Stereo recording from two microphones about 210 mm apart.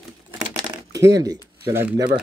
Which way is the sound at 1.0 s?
15° right (ahead or behind).